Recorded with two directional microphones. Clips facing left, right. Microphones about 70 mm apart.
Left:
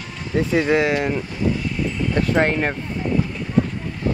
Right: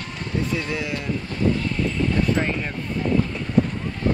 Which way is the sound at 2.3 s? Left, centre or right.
Left.